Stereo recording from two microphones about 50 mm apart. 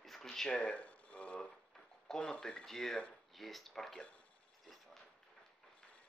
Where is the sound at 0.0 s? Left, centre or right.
Centre.